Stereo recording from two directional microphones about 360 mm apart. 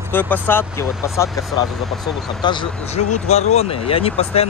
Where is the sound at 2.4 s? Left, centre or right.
Centre.